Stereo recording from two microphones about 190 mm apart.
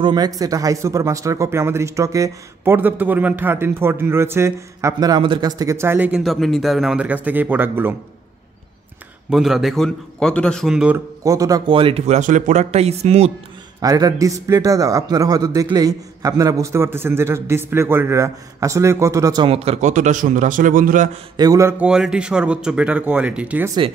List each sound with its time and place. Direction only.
0.0 s a man's voice: 20° right (ahead or behind)
9.3 s a man's voice: centre (ahead or behind)
11.2 s speech: 20° right (ahead or behind); by 13.3 s 35° right (ahead or behind)
13.7 s a man's voice: 20° right (ahead or behind); by 21.1 s 45° right (ahead or behind)
21.4 s a man's voice: 15° right (ahead or behind)